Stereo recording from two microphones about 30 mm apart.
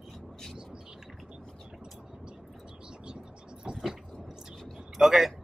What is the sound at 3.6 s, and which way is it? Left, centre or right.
Vehicle, right.